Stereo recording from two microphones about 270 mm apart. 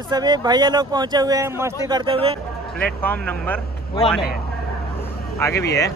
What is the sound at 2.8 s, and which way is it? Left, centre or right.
Speech, centre.